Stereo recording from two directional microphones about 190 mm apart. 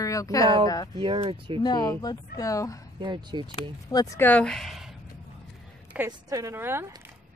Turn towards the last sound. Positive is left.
turn(degrees=-10)  # may be behind; listen again after turning